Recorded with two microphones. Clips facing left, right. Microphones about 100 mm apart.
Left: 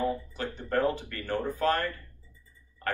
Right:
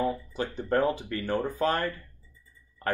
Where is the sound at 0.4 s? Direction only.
15° right (ahead or behind).